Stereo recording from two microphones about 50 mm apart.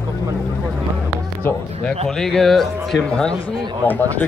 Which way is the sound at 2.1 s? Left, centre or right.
Centre.